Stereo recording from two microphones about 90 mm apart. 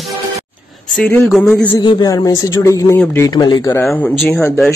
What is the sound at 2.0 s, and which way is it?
Speech, 40° left (ahead or behind).